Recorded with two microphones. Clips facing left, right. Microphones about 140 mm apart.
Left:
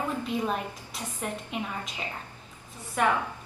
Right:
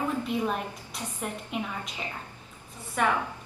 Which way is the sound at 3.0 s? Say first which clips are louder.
Left 1 dB; centre (ahead or behind).